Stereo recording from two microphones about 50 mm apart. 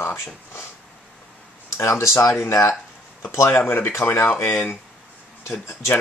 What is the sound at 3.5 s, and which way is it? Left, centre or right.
Speech, left.